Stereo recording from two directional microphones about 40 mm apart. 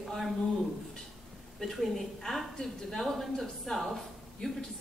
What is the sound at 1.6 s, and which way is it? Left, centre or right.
A woman's voice, centre.